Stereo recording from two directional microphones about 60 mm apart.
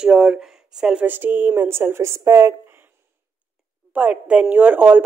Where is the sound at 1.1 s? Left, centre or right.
Right.